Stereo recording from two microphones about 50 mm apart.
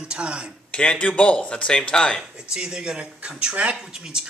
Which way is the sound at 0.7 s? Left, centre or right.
Left.